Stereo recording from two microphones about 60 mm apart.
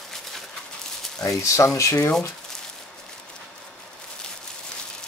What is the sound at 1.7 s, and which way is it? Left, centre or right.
Speech, left.